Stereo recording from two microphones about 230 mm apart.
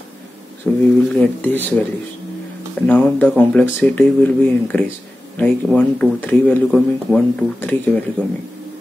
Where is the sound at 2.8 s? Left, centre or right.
Centre.